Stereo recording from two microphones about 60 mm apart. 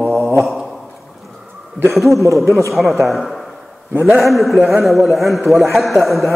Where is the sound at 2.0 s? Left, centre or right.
Right.